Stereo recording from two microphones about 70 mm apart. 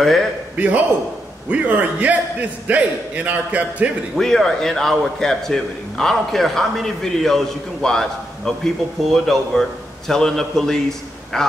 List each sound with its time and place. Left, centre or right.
0.0 s a man's voice: centre
0.6 s a man's voice: right
4.2 s a man's voice: centre